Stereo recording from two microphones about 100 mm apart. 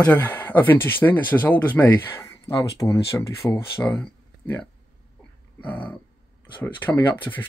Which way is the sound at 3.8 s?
15° left (ahead or behind).